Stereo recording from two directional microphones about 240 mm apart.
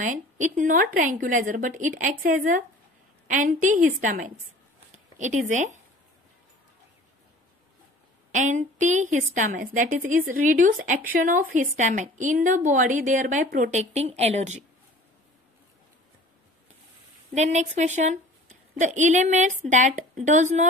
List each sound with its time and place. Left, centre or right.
0.0 s a woman's voice: right
8.3 s a woman's voice: right
17.3 s a woman's voice: right